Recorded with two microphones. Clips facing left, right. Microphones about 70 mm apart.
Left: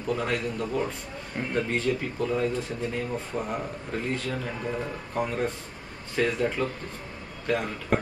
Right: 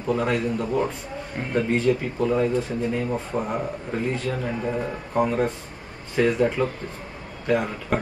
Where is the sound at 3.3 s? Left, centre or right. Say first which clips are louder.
Right 4 dB; right.